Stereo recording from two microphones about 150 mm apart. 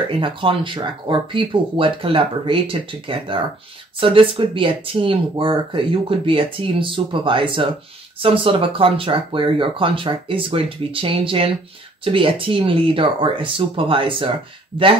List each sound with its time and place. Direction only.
0.2 s speech: 35° right (ahead or behind)